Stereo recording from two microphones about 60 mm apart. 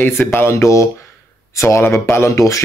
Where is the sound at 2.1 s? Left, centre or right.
Left.